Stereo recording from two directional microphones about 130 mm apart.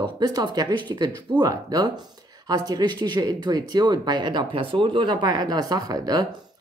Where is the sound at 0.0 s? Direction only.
30° right (ahead or behind).